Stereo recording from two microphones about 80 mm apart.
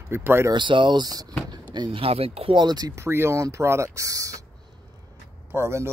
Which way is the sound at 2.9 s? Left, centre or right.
Right.